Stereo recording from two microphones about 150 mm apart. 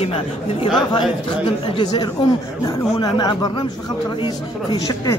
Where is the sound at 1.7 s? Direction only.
30° left (ahead or behind).